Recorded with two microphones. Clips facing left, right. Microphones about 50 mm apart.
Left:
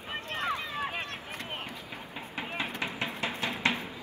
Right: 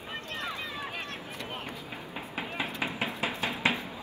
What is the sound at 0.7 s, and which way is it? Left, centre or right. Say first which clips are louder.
Boat: left 3 dB; left.